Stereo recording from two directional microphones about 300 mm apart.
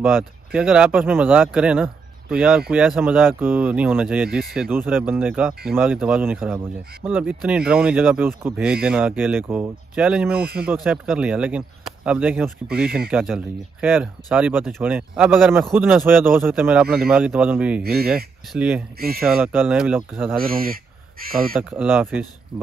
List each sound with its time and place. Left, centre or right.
0.0 s speech: centre
17.8 s speech: right
18.1 s speech: centre
18.9 s speech: right
19.2 s speech: centre
20.3 s speech: right
21.5 s speech: centre